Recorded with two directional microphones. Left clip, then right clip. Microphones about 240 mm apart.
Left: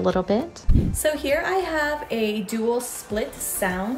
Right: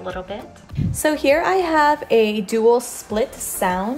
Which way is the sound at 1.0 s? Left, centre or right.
Right.